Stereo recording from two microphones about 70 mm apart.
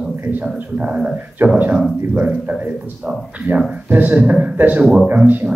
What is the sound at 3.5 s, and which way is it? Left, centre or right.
Speech, right.